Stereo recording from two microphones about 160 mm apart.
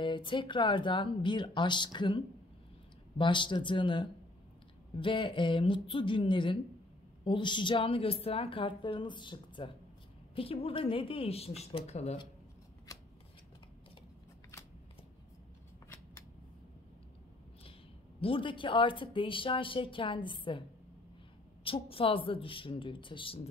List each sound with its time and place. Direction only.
0.0 s a woman's voice: 30° left (ahead or behind)
18.2 s a woman's voice: 30° left (ahead or behind)
21.6 s a woman's voice: 35° left (ahead or behind)